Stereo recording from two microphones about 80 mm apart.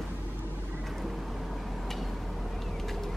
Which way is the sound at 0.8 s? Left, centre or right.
Centre.